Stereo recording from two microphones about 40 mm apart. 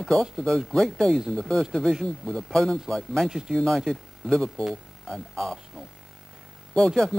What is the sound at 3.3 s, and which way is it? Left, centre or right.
Speech, centre.